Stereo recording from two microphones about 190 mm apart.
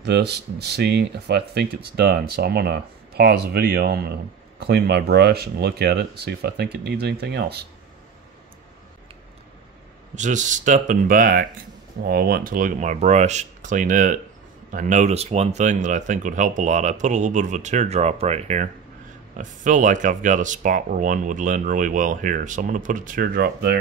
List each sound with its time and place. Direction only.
0.0 s speech: 60° right (ahead or behind)
10.1 s speech: 40° right (ahead or behind); by 23.8 s 55° right (ahead or behind)